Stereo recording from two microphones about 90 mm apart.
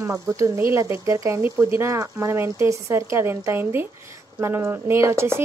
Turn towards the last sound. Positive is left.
turn(degrees=-30)  # may be behind; listen again after turning